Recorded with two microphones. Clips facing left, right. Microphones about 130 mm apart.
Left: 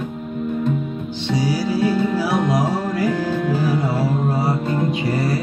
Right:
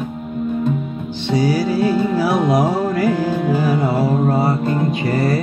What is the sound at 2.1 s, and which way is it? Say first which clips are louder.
Music: right 3 dB; 55° right (ahead or behind).